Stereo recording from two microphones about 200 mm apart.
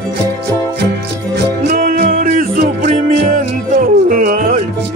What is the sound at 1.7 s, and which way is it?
Music, 45° right (ahead or behind).